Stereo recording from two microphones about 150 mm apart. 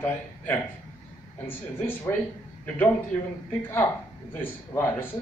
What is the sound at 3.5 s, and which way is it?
A man's voice, 15° left (ahead or behind).